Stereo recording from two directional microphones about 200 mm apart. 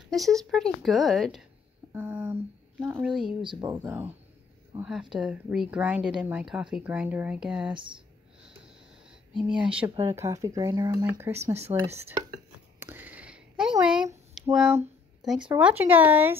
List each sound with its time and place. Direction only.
0.1 s speech: centre (ahead or behind)
1.9 s a sound: 10° right (ahead or behind)
2.9 s speech: 5° right (ahead or behind)
3.4 s speech: 20° right (ahead or behind)
3.8 s speech: 10° right (ahead or behind)
9.3 s speech: 25° right (ahead or behind)
10.1 s speech: 15° right (ahead or behind)
12.7 s a sound: 10° right (ahead or behind)
15.5 s speech: 10° right (ahead or behind)